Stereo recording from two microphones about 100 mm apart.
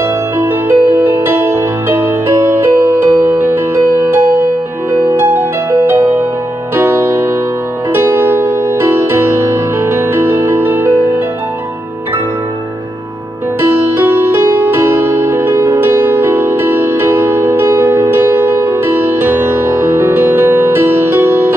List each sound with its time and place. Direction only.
0.4 s music: 25° right (ahead or behind)
13.6 s music: 20° right (ahead or behind)